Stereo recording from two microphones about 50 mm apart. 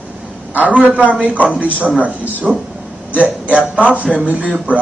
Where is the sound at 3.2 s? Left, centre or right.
Right.